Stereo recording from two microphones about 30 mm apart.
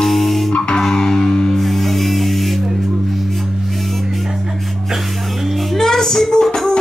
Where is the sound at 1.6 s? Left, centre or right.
Centre.